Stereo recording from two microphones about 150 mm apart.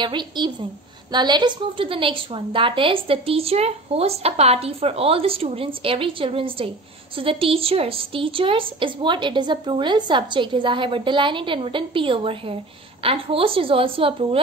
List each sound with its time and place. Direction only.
0.0 s a woman's voice: 30° right (ahead or behind)